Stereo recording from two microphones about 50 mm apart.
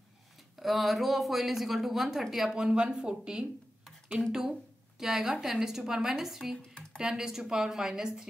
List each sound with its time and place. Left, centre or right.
0.6 s speech: centre
2.5 s a woman's voice: centre
6.7 s a sound: centre
7.0 s a woman's voice: centre